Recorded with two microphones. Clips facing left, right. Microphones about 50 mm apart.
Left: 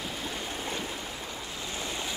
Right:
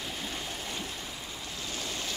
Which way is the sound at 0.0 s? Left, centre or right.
Centre.